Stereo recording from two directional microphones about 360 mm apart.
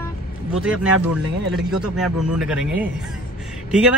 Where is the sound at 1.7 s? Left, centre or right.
Centre.